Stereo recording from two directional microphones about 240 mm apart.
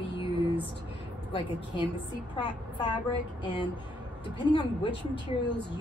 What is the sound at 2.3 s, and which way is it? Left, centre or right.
Speech, centre.